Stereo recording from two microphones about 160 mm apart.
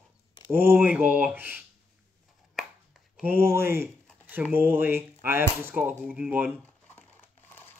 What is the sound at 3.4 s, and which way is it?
Speech, 15° right (ahead or behind).